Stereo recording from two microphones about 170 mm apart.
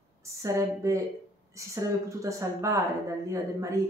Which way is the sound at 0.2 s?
20° right (ahead or behind).